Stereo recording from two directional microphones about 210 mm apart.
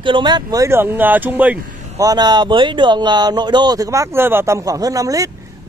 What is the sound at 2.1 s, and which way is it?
Speech, 20° right (ahead or behind).